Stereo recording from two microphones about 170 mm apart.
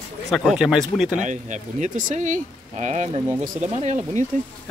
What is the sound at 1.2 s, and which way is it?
Speech, 45° right (ahead or behind).